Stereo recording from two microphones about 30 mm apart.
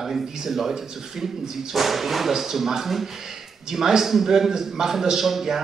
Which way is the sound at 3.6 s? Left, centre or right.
Centre.